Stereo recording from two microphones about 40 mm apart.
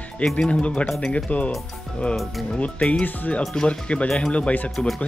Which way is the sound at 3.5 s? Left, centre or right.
Left.